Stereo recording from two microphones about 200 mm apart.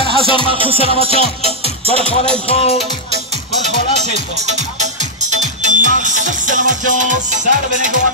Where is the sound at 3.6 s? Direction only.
35° right (ahead or behind).